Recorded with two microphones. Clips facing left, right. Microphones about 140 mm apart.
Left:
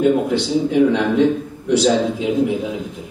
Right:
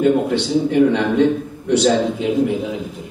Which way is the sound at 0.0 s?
Centre (ahead or behind).